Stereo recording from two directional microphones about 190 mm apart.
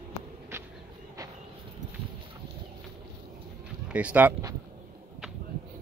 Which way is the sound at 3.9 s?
5° right (ahead or behind).